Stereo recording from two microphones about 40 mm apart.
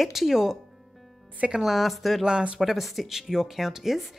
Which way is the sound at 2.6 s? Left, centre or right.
Centre.